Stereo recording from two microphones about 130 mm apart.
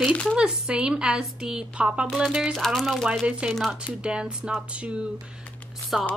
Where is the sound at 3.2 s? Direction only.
10° right (ahead or behind).